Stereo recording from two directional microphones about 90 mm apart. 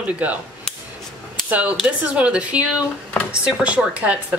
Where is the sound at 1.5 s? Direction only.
15° right (ahead or behind).